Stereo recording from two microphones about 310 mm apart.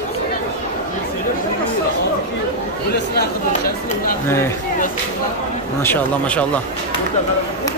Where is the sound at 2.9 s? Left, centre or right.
Left.